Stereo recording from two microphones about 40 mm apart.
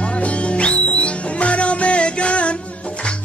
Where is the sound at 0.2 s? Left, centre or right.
Left.